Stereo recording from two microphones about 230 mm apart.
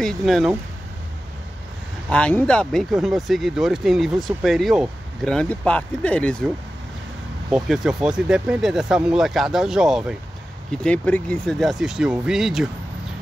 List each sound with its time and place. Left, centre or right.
0.0 s speech: centre
2.0 s speech: centre
7.5 s speech: centre